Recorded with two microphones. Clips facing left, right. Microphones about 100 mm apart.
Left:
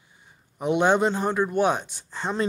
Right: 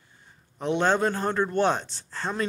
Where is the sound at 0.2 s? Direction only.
10° left (ahead or behind).